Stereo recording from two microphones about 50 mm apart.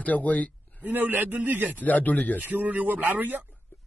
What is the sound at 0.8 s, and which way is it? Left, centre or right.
Speech, right.